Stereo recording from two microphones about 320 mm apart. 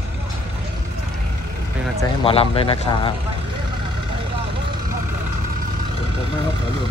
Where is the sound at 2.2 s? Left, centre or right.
Centre.